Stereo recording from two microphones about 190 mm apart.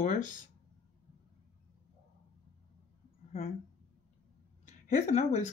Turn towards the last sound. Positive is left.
turn(degrees=35)  # may be behind; listen again after turning